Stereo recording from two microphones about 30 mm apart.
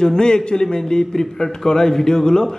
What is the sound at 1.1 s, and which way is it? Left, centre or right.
Speech, centre.